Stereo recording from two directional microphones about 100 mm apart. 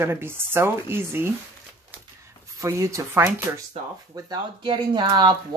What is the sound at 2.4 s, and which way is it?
Speech, 30° right (ahead or behind).